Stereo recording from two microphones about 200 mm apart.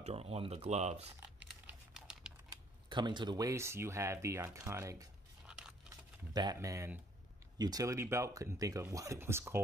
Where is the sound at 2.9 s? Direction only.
25° right (ahead or behind).